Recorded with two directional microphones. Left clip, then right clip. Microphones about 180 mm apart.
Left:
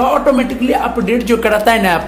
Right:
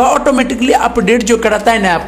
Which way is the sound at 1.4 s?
10° right (ahead or behind).